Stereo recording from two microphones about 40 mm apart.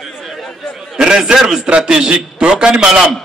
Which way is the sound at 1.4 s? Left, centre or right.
Centre.